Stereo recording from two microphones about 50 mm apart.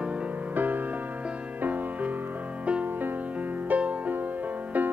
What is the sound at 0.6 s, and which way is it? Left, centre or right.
Music, right.